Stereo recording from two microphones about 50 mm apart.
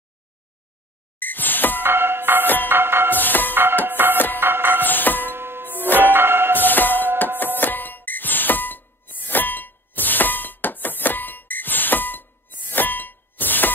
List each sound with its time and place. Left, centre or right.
1.2 s a sound: left
1.8 s music: right
2.4 s music: left
2.7 s music: right
3.2 s music: left
3.8 s music: right
4.8 s music: left
5.3 s music: right
6.6 s music: left